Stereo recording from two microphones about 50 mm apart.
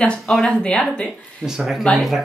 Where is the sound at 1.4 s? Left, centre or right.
Centre.